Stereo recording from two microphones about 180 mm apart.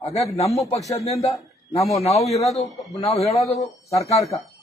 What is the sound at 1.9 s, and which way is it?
Speech, 35° left (ahead or behind).